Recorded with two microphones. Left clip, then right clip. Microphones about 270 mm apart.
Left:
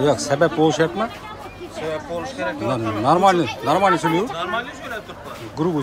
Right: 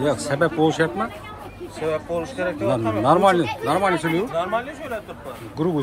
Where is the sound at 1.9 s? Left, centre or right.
Right.